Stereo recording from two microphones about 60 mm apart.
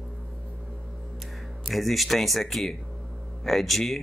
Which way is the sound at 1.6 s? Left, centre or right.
Centre.